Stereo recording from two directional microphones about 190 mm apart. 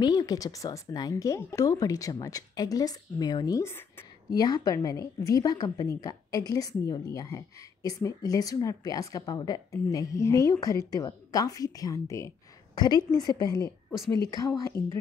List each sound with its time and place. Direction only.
0.0 s a woman's voice: 20° left (ahead or behind)
13.8 s a woman's voice: centre (ahead or behind)